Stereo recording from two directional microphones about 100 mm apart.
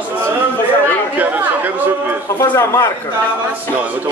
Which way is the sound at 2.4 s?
25° left (ahead or behind).